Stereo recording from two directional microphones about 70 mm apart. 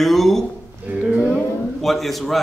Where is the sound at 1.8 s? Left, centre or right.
Centre.